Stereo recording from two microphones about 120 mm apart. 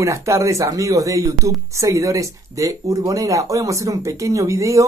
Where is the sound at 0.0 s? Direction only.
25° right (ahead or behind).